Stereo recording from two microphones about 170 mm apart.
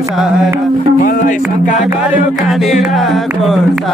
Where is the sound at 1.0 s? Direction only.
45° left (ahead or behind).